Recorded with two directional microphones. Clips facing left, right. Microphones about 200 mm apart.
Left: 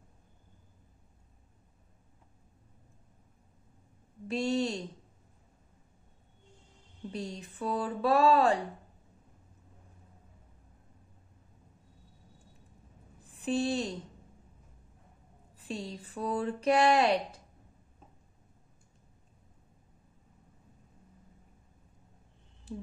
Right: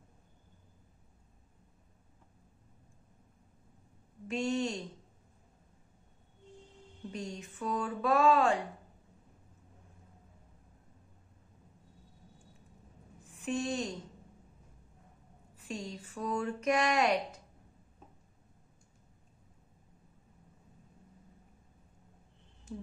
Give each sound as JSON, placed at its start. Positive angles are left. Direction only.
{"t": 4.3, "sound": "speech", "side_deg": 35}
{"t": 7.1, "sound": "speech", "side_deg": 35}
{"t": 13.2, "sound": "a woman's voice", "side_deg": 35}
{"t": 15.5, "sound": "speech", "side_deg": 35}
{"t": 22.7, "sound": "a sound", "side_deg": 35}